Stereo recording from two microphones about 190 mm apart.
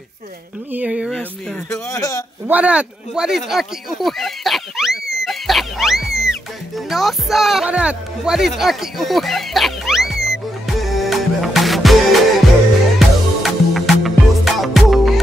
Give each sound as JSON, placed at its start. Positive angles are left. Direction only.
{"t": 0.7, "sound": "speech", "side_deg": -5}
{"t": 1.7, "sound": "a man's voice", "side_deg": 20}
{"t": 2.4, "sound": "a sound", "side_deg": -10}
{"t": 6.9, "sound": "music", "side_deg": 0}